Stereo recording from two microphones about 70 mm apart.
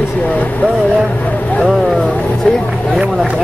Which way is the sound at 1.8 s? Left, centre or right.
Centre.